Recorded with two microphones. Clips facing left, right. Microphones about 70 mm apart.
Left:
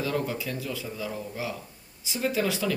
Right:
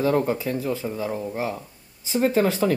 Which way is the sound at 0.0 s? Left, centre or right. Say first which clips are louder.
Right 8 dB; right.